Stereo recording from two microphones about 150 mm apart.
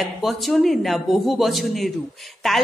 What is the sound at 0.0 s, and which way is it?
A woman's voice, centre (ahead or behind).